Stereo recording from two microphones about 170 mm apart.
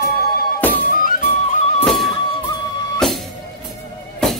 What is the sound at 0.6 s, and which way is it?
Music, 10° left (ahead or behind).